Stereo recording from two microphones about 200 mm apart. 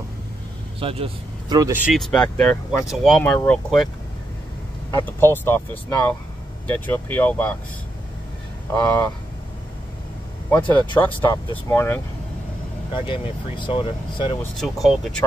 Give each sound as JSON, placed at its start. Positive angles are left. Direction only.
{"t": 0.7, "sound": "speech", "side_deg": -30}
{"t": 1.9, "sound": "speech", "side_deg": 0}
{"t": 4.9, "sound": "speech", "side_deg": 10}
{"t": 8.7, "sound": "speech", "side_deg": 5}
{"t": 11.2, "sound": "speech", "side_deg": 10}
{"t": 12.9, "sound": "speech", "side_deg": 25}
{"t": 14.4, "sound": "speech", "side_deg": 0}